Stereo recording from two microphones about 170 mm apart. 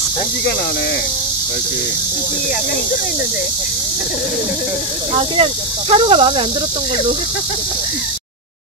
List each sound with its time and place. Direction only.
5.1 s speech: 35° right (ahead or behind)